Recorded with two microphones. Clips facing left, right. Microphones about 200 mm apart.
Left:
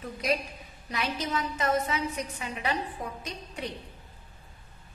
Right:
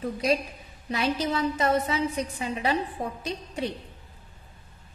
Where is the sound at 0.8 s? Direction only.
30° right (ahead or behind).